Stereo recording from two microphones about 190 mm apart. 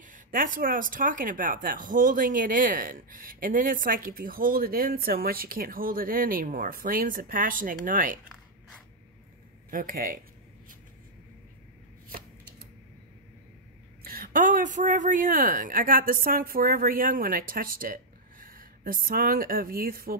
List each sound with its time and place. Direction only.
0.0 s speech: 45° right (ahead or behind)
9.7 s speech: 45° right (ahead or behind)
14.0 s speech: 50° right (ahead or behind)